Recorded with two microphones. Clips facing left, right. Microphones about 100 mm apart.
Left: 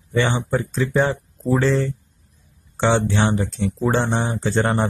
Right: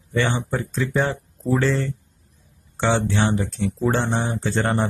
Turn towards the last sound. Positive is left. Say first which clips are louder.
# left 2 dB
turn(degrees=25)  # may be behind; listen again after turning